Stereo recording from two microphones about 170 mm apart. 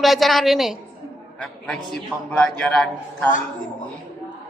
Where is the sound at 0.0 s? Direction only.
Centre (ahead or behind).